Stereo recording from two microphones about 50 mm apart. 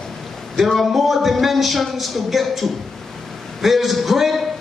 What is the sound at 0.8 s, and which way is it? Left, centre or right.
Speech, centre.